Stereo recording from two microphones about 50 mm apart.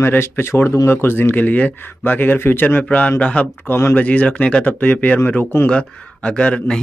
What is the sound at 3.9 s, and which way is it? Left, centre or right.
Speech, left.